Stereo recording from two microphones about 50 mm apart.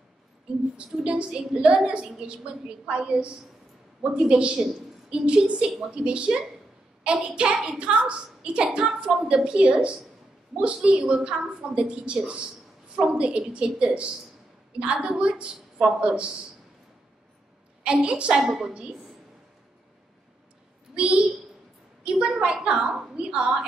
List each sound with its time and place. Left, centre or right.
0.7 s a woman's voice: right
8.8 s a woman's voice: centre
17.8 s a woman's voice: right
18.4 s a woman's voice: centre
20.9 s a woman's voice: centre